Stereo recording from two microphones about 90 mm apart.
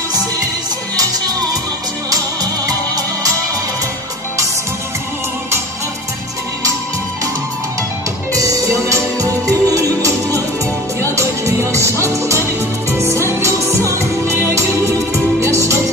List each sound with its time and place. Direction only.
8.4 s music: 40° right (ahead or behind)